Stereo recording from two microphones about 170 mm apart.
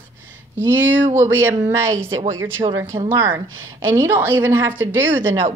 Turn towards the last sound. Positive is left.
turn(degrees=-15)  # may be behind; listen again after turning